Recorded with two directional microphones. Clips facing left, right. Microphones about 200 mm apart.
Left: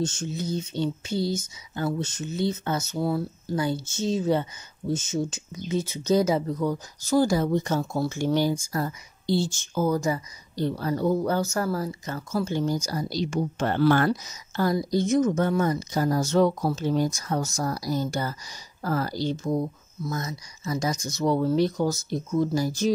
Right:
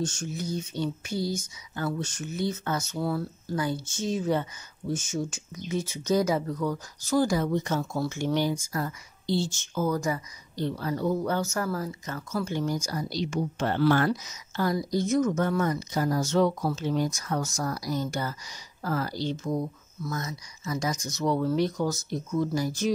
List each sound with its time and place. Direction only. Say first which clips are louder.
0.0 s speech: left 3 dB; 20° left (ahead or behind)
10.5 s speech: left 3 dB; 40° left (ahead or behind)
13.1 s speech: left 2 dB; 40° left (ahead or behind)
14.2 s speech: left 3 dB; 35° left (ahead or behind)